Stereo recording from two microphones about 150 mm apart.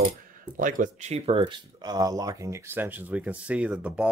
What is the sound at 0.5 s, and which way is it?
Speech, 60° right (ahead or behind).